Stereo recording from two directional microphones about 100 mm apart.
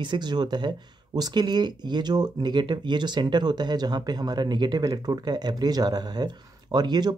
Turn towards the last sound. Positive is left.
turn(degrees=-45)  # may be behind; listen again after turning